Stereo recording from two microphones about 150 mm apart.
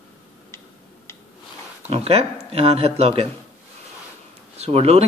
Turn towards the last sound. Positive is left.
turn(degrees=-45)  # may be behind; listen again after turning